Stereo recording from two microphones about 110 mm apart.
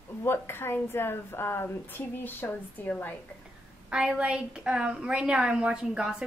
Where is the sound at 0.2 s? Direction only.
20° left (ahead or behind).